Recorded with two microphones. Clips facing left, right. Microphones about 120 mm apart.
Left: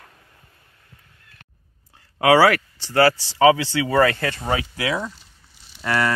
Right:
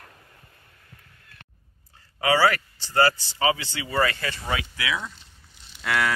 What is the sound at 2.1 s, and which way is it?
Speech, 75° left (ahead or behind).